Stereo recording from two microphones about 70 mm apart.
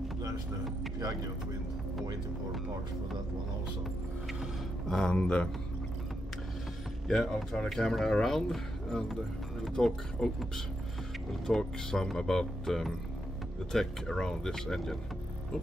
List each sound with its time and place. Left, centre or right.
4.8 s speech: centre
7.1 s speech: centre